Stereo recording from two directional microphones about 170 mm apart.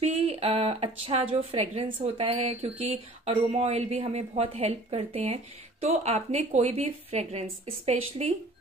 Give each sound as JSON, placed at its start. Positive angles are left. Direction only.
{"t": 0.0, "sound": "a woman's voice", "side_deg": -35}